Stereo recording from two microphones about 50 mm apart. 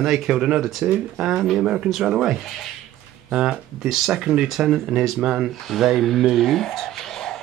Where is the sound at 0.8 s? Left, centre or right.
Right.